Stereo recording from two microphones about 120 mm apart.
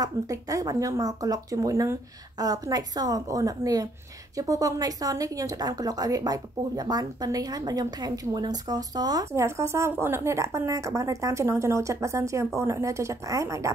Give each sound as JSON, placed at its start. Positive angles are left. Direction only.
{"t": 0.0, "sound": "a woman's voice", "side_deg": -30}